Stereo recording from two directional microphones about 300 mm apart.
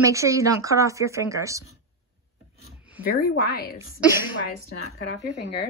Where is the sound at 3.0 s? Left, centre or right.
Left.